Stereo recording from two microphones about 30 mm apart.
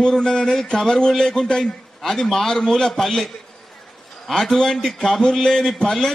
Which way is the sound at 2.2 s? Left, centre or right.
Centre.